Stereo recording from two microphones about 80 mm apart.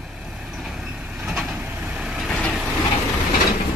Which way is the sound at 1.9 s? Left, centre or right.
Centre.